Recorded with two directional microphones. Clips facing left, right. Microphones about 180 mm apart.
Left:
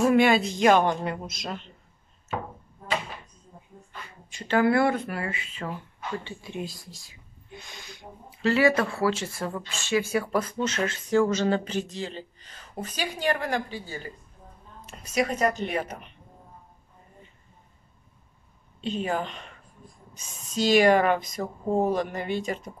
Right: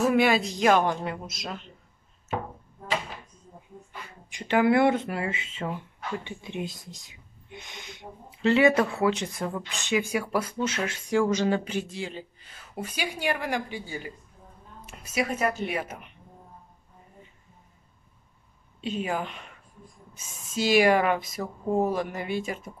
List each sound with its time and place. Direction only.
0.0 s speech: centre (ahead or behind)
4.3 s speech: 15° right (ahead or behind)
18.8 s speech: 5° right (ahead or behind)